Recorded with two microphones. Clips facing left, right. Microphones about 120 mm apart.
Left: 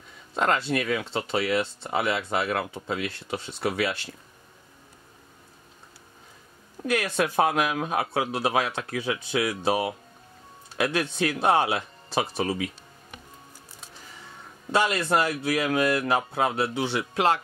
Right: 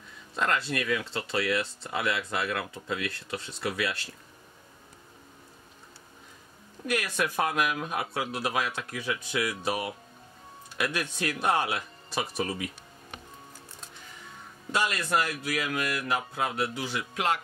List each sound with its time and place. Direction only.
0.3 s a sound: 30° left (ahead or behind)
0.8 s speech: 25° left (ahead or behind)
7.0 s speech: 30° left (ahead or behind)
14.7 s speech: 25° left (ahead or behind)